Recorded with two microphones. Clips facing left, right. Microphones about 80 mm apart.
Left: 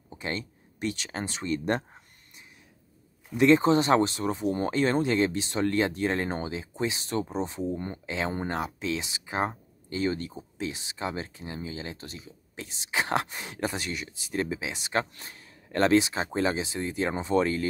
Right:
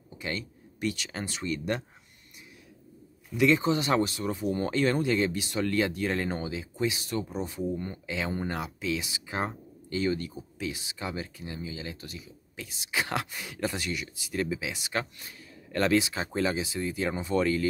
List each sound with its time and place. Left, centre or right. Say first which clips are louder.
0.1 s speech: left 1 dB; left
3.3 s speech: left 4 dB; left